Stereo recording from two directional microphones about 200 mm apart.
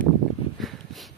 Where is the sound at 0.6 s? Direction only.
Centre (ahead or behind).